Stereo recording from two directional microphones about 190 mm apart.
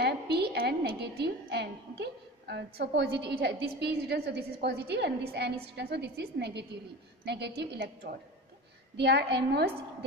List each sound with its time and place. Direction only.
0.0 s a woman's voice: 60° right (ahead or behind)